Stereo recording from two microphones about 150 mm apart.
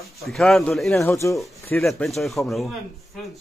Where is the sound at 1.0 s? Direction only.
20° left (ahead or behind).